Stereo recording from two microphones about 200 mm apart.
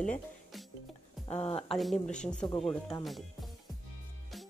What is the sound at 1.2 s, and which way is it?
Speech, 30° left (ahead or behind).